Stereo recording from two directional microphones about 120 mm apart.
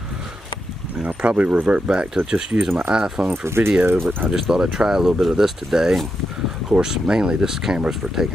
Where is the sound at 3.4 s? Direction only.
20° right (ahead or behind).